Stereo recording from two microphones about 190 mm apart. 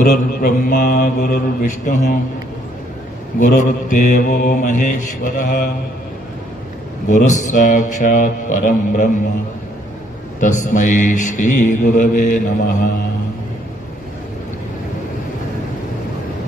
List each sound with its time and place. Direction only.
0.0 s mantra: 50° left (ahead or behind)
3.3 s mantra: 45° left (ahead or behind)
7.1 s mantra: 40° left (ahead or behind)
10.4 s mantra: 40° left (ahead or behind)